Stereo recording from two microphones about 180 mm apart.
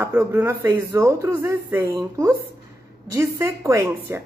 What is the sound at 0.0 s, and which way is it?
Speech, 15° right (ahead or behind).